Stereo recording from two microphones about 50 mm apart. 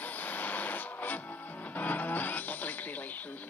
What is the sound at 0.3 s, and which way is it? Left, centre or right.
Music, left.